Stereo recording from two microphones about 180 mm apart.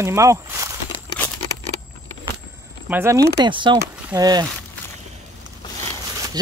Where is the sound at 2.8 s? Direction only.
15° right (ahead or behind).